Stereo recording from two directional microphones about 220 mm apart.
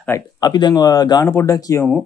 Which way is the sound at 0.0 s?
15° left (ahead or behind).